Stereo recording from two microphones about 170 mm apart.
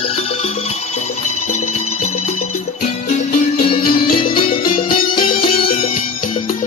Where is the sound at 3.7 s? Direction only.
30° left (ahead or behind).